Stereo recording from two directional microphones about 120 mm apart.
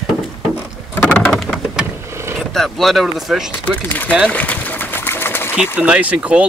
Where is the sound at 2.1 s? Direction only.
20° right (ahead or behind).